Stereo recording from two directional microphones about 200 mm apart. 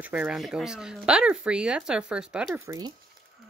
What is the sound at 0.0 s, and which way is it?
Speech, 5° right (ahead or behind).